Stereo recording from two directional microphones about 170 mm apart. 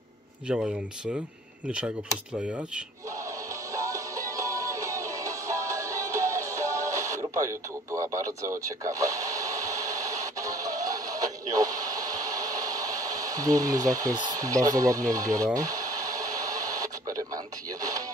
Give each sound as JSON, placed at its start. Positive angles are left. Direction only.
{"t": 0.5, "sound": "speech", "side_deg": -5}
{"t": 3.7, "sound": "music", "side_deg": -20}